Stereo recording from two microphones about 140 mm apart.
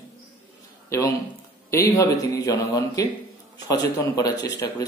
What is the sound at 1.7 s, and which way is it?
A man's voice, 20° left (ahead or behind).